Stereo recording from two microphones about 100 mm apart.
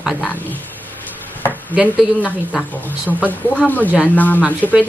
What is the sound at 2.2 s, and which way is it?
Speech, 15° left (ahead or behind).